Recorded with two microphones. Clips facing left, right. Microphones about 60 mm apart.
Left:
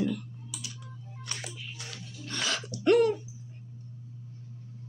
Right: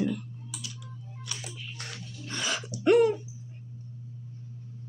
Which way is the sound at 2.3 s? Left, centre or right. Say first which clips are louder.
Even; centre.